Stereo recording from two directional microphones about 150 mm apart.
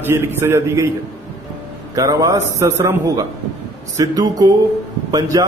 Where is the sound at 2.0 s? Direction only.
25° right (ahead or behind).